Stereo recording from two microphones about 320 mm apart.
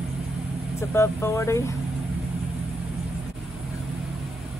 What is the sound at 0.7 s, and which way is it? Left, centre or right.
Speech, centre.